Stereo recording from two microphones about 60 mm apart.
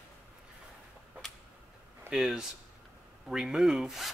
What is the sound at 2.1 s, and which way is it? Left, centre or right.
Speech, centre.